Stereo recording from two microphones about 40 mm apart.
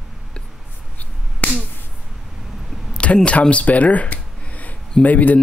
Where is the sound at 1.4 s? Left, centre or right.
Left.